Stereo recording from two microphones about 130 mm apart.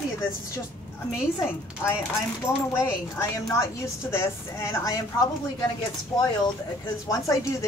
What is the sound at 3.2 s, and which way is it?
A woman's voice, 20° left (ahead or behind).